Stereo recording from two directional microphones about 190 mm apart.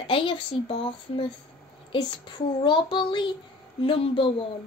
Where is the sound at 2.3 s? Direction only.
25° left (ahead or behind).